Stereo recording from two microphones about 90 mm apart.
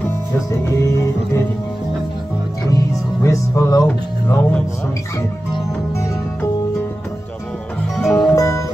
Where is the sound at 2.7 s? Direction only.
35° left (ahead or behind).